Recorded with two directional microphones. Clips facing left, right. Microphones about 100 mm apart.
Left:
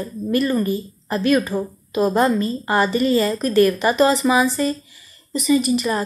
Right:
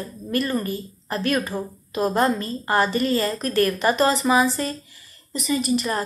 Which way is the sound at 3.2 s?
10° left (ahead or behind).